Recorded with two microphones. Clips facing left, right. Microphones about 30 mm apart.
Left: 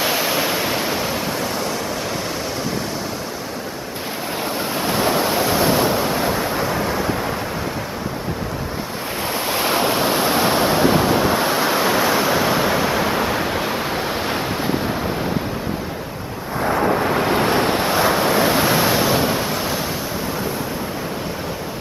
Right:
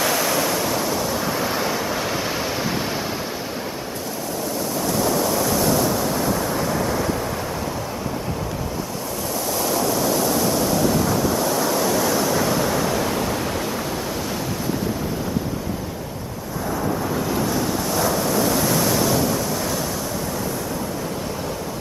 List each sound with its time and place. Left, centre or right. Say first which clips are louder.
0.0 s waves: left 1 dB; left
1.4 s waves: even; centre
4.7 s waves: left 2 dB; left
9.5 s waves: left 3 dB; left
16.6 s waves: left 6 dB; left